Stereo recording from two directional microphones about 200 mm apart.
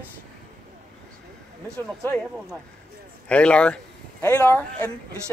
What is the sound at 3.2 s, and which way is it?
A man's voice, 5° left (ahead or behind).